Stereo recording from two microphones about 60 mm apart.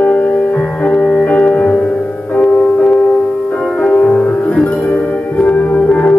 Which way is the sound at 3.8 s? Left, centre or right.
Left.